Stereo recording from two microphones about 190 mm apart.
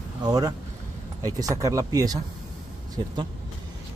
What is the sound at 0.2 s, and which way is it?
Speech, 20° right (ahead or behind).